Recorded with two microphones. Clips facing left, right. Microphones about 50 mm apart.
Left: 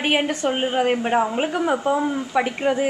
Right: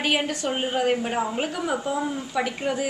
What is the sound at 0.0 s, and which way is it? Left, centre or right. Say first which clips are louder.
A woman's voice: left 4 dB; left.